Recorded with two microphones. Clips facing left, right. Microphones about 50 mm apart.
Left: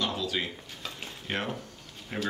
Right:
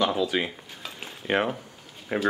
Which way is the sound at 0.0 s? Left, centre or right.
Centre.